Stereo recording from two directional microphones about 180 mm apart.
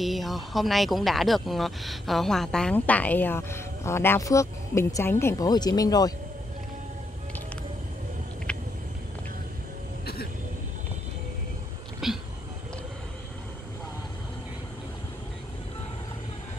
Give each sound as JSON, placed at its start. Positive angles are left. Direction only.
{"t": 0.0, "sound": "speech", "side_deg": 0}
{"t": 8.5, "sound": "vehicle", "side_deg": 5}
{"t": 12.0, "sound": "a sound", "side_deg": 0}